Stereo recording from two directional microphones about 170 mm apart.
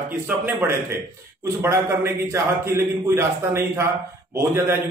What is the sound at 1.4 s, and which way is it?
A man's voice, 15° right (ahead or behind).